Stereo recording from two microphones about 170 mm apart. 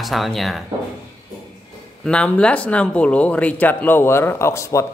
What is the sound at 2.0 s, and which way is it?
Speech, 5° left (ahead or behind).